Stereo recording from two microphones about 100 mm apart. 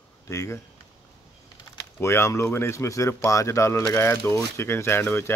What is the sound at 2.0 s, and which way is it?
Speech, 25° left (ahead or behind).